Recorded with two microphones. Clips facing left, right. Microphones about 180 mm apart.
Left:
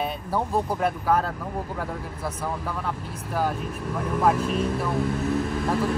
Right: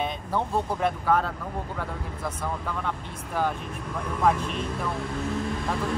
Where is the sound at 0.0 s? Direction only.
5° left (ahead or behind).